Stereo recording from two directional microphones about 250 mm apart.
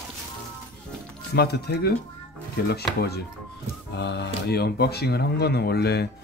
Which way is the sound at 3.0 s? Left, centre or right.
Left.